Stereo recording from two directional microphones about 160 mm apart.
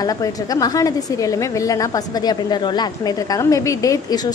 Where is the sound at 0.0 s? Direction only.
25° left (ahead or behind).